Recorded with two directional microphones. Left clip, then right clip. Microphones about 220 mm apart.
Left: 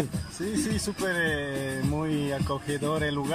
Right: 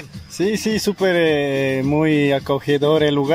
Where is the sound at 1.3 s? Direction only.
50° right (ahead or behind).